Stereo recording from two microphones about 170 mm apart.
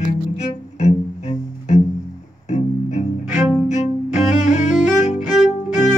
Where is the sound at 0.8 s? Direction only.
45° left (ahead or behind).